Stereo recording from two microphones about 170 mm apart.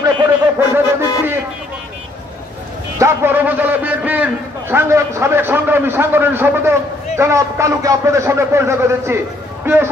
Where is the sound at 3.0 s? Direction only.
15° right (ahead or behind).